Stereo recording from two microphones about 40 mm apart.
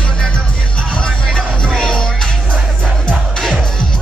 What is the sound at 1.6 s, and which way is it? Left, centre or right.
Music, centre.